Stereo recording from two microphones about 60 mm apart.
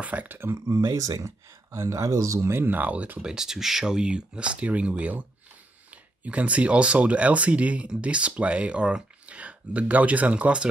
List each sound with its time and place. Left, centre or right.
0.0 s speech: right
0.6 s speech: right
1.7 s speech: right
2.6 s speech: right